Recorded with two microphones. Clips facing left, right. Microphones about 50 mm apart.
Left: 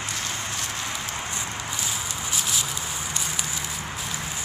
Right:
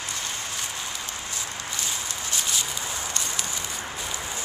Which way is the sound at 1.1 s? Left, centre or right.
Left.